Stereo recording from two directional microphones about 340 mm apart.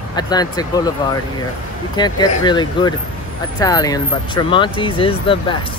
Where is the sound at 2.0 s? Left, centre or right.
Centre.